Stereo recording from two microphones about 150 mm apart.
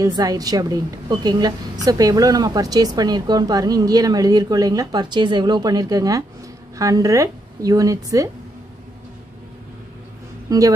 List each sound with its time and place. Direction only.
0.0 s a woman's voice: 25° right (ahead or behind)
10.5 s a woman's voice: 25° right (ahead or behind)